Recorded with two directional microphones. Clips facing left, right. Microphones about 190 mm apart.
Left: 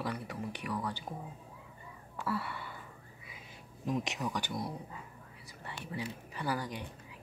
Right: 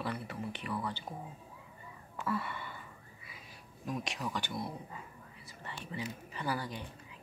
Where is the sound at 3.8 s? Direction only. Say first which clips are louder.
Left 3 dB; 20° left (ahead or behind).